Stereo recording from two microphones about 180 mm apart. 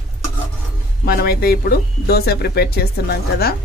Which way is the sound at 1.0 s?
55° left (ahead or behind).